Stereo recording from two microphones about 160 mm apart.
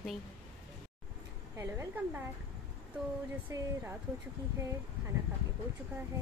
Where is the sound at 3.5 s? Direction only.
20° right (ahead or behind).